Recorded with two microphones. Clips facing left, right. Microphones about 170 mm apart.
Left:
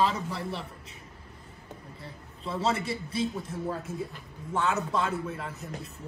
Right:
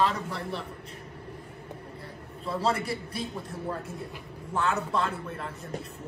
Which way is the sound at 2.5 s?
Centre (ahead or behind).